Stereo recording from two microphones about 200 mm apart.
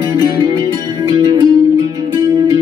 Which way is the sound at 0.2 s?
20° right (ahead or behind).